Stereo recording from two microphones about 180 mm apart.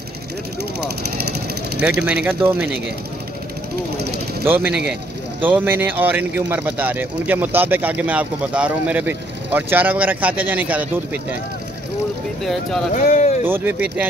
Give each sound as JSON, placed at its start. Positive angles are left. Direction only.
{"t": 1.8, "sound": "speech", "side_deg": -5}
{"t": 4.5, "sound": "speech", "side_deg": -10}
{"t": 12.9, "sound": "speech", "side_deg": 45}
{"t": 13.4, "sound": "speech", "side_deg": -10}